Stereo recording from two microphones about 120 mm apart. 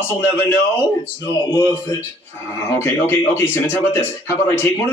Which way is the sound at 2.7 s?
20° left (ahead or behind).